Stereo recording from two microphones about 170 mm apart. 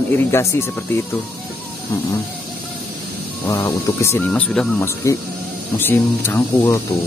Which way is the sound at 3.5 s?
15° left (ahead or behind).